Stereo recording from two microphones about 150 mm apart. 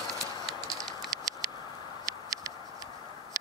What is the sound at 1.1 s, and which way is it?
Patter, 25° right (ahead or behind).